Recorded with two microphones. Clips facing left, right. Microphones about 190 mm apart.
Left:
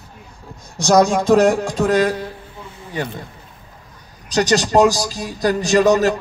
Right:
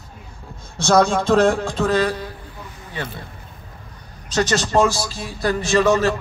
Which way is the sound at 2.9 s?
15° left (ahead or behind).